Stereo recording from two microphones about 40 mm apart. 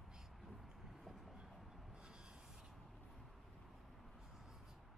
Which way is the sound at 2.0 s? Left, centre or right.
Right.